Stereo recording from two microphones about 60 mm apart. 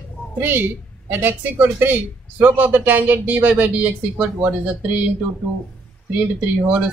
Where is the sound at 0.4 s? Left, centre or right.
Right.